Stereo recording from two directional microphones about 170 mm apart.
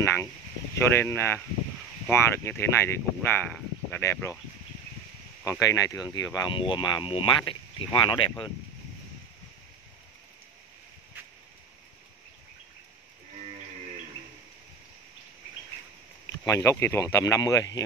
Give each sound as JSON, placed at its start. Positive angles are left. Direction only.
{"t": 0.7, "sound": "speech", "side_deg": 15}
{"t": 5.4, "sound": "speech", "side_deg": 20}
{"t": 16.4, "sound": "speech", "side_deg": 15}